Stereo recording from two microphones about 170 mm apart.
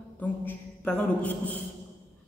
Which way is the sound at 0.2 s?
10° left (ahead or behind).